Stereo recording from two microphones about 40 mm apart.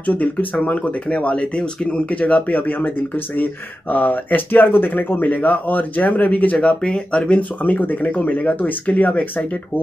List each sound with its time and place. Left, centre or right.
0.0 s speech: left
0.6 s speech: left
2.0 s speech: left
3.9 s speech: left
7.8 s speech: left